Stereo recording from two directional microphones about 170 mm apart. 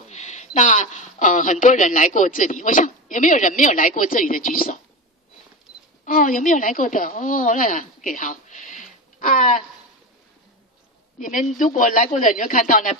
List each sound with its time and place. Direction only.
0.1 s speech: 45° left (ahead or behind)
6.0 s speech: 50° left (ahead or behind)
11.1 s a woman's voice: 50° left (ahead or behind)